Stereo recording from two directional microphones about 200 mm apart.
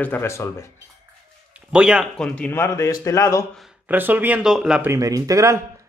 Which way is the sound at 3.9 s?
10° right (ahead or behind).